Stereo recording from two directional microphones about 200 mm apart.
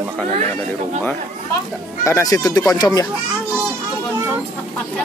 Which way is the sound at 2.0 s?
15° left (ahead or behind).